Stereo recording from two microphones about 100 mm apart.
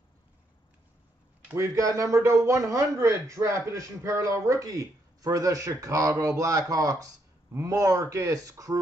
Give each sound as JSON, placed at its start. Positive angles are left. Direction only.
{"t": 1.5, "sound": "speech", "side_deg": -30}